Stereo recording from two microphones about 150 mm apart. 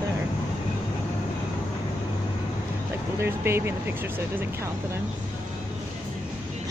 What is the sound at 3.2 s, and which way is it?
Speech, 15° right (ahead or behind).